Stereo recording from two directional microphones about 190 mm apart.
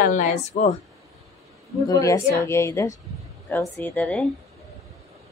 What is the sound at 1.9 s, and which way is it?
A woman's voice, 15° left (ahead or behind).